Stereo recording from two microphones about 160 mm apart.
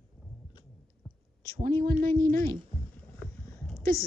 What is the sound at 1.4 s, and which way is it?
Speech, 65° right (ahead or behind).